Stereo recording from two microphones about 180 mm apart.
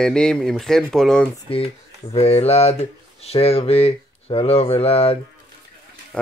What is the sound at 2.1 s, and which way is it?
Speech, 35° left (ahead or behind).